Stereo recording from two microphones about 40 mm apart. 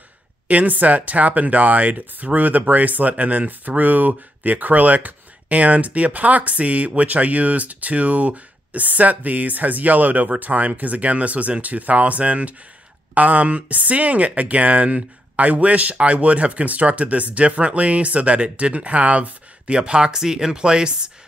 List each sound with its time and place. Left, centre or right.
0.5 s speech: right